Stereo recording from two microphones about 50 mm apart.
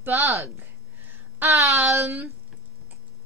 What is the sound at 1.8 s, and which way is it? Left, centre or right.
Speech, right.